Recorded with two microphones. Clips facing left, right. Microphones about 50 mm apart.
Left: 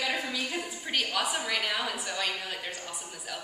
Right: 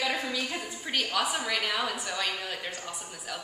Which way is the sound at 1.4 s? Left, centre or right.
Centre.